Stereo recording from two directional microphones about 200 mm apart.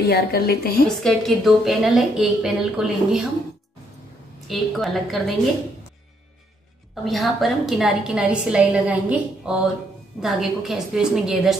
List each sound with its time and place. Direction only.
0.0 s a woman's voice: 50° left (ahead or behind)
0.8 s a woman's voice: centre (ahead or behind)
4.5 s a woman's voice: centre (ahead or behind)
7.1 s a woman's voice: centre (ahead or behind)